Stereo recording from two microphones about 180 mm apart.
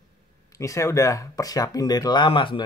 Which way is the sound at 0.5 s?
15° left (ahead or behind).